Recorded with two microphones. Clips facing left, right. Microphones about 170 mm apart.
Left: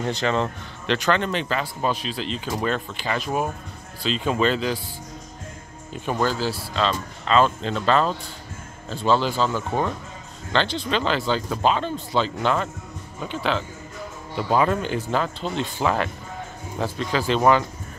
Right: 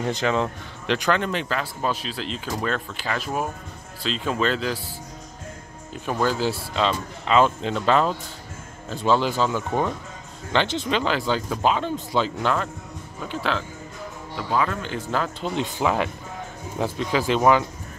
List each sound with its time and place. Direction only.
0.0 s speech: 5° right (ahead or behind)
6.0 s speech: 5° right (ahead or behind)
6.4 s speech: 15° right (ahead or behind)
12.4 s speech: centre (ahead or behind)
14.3 s speech: 25° left (ahead or behind)
15.0 s speech: centre (ahead or behind)
15.4 s speech: 15° right (ahead or behind)